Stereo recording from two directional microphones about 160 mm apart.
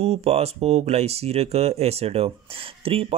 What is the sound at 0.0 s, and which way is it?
Speech, 40° right (ahead or behind).